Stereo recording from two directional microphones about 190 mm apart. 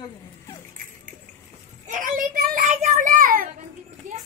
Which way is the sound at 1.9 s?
45° right (ahead or behind).